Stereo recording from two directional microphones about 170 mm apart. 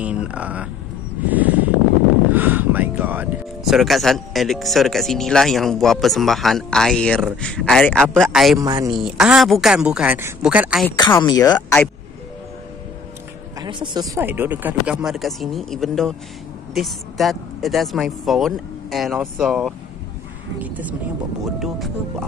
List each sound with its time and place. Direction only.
0.0 s speech: 5° right (ahead or behind)
8.5 s a man's voice: 20° right (ahead or behind)
8.9 s speech: centre (ahead or behind)
11.0 s speech: 25° left (ahead or behind)
13.6 s speech: 25° right (ahead or behind); by 21.9 s centre (ahead or behind)